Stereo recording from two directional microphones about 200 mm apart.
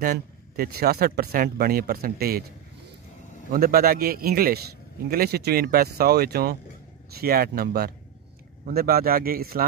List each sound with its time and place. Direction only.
0.0 s speech: 45° right (ahead or behind)
3.5 s speech: 45° right (ahead or behind)